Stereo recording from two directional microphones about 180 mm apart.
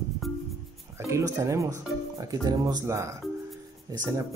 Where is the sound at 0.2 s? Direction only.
Centre (ahead or behind).